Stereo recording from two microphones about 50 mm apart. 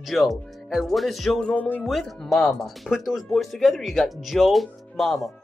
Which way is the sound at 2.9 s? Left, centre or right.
Centre.